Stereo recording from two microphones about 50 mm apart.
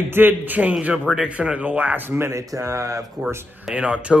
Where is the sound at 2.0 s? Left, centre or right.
Right.